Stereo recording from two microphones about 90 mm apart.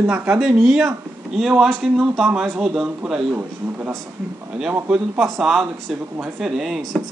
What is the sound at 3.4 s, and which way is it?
A man's voice, 20° right (ahead or behind).